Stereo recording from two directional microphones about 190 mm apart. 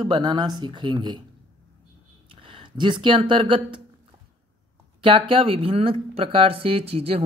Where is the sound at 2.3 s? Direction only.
25° right (ahead or behind).